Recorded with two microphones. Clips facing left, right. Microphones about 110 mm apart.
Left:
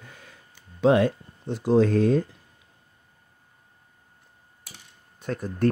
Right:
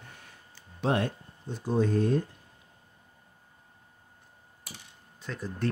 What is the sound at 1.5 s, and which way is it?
Speech, 85° left.